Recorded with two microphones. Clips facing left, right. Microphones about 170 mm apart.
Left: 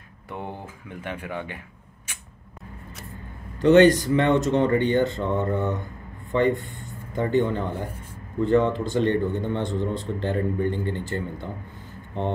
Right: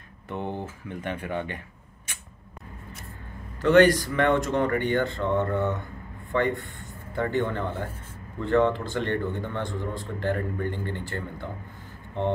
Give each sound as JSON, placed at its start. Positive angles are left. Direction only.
{"t": 0.3, "sound": "speech", "side_deg": 10}
{"t": 3.6, "sound": "a man's voice", "side_deg": 20}